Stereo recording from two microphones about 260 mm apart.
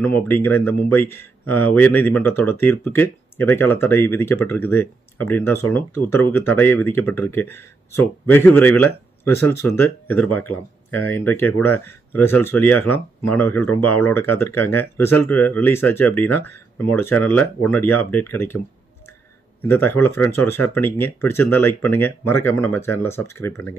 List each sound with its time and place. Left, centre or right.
0.0 s speech: centre
19.7 s speech: centre